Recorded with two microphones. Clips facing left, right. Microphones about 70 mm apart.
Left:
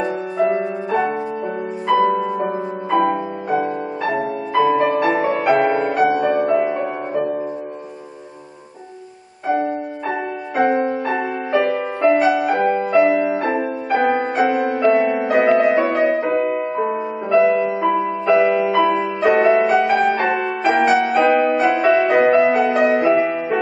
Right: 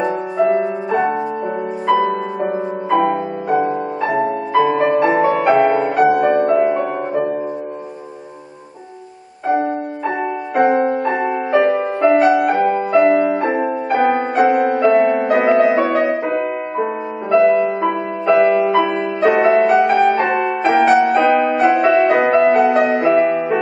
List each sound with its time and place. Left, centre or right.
0.5 s music: centre
9.5 s music: right
10.9 s music: centre
13.4 s music: centre
13.8 s music: centre